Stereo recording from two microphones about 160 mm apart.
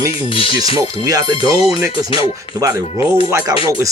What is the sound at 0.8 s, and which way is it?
Speech, 20° right (ahead or behind).